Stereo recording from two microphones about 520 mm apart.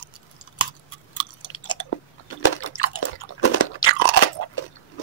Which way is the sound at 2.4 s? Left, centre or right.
Left.